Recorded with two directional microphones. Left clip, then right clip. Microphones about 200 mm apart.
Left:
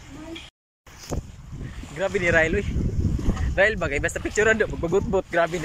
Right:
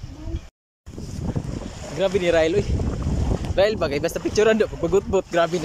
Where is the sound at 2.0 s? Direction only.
15° right (ahead or behind).